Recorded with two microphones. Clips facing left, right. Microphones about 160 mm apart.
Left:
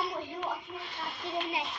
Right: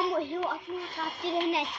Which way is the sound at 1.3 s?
75° right (ahead or behind).